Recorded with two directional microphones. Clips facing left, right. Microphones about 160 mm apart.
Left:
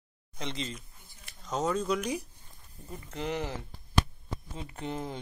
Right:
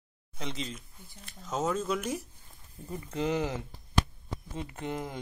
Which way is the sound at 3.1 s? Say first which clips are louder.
Right 4 dB; 25° right (ahead or behind).